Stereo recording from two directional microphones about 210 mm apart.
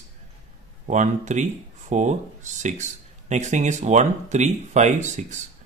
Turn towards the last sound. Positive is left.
turn(degrees=-35)  # may be behind; listen again after turning